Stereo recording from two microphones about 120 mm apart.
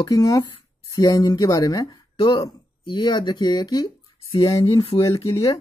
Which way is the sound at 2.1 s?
50° left (ahead or behind).